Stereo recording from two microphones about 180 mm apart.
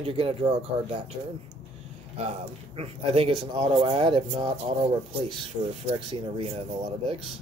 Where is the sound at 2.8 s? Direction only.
35° right (ahead or behind).